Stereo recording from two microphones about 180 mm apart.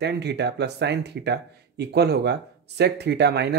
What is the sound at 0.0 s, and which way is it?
Speech, 70° right (ahead or behind).